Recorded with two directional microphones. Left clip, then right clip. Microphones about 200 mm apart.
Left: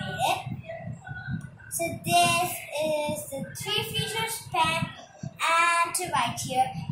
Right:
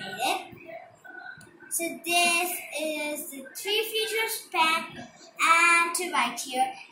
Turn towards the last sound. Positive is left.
turn(degrees=20)  # may be behind; listen again after turning